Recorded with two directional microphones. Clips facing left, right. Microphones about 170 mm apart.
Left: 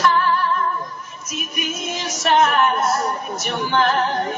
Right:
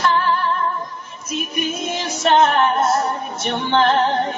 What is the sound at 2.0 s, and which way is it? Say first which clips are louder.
Music: right 2 dB; 30° right (ahead or behind).